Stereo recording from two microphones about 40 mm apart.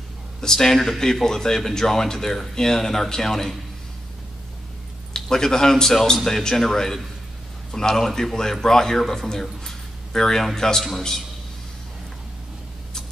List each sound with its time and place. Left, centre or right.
0.4 s speech: centre
5.1 s speech: centre